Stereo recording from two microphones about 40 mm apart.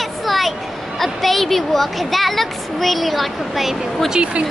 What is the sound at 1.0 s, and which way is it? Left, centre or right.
Speech, centre.